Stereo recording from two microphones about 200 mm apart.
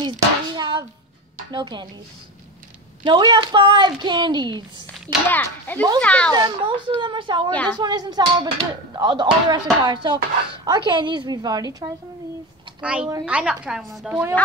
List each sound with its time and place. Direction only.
0.6 s a sound: 20° right (ahead or behind)
1.5 s speech: 20° right (ahead or behind)
3.1 s speech: 25° right (ahead or behind)
5.0 s a child's voice: 10° left (ahead or behind)
6.3 s speech: 20° right (ahead or behind)
7.5 s a child's voice: 5° left (ahead or behind)
7.8 s speech: 20° right (ahead or behind)
12.8 s a woman's voice: 5° right (ahead or behind)